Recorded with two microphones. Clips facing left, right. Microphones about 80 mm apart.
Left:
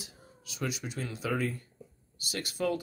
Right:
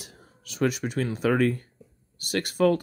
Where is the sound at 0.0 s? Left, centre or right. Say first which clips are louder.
Right 2 dB; right.